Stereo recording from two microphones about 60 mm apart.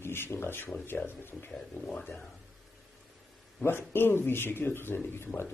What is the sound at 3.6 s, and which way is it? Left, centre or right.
Speech, left.